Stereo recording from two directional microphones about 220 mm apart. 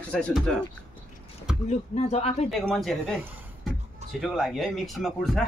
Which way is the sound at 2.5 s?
Centre (ahead or behind).